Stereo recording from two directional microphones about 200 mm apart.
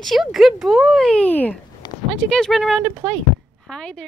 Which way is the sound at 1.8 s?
20° left (ahead or behind).